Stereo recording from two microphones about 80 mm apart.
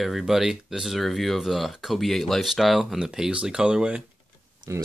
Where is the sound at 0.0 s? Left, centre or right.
Centre.